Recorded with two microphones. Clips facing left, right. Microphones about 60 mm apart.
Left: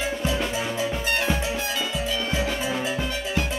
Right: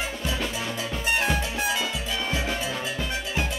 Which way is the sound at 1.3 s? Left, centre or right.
Centre.